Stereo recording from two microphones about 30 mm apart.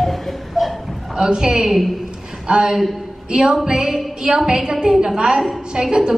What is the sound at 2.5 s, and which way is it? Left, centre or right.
A woman's voice, right.